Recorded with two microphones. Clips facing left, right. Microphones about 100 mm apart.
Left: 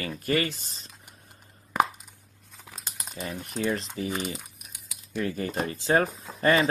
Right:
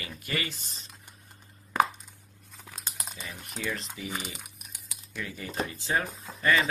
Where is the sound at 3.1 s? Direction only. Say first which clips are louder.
Left 12 dB; 40° left (ahead or behind).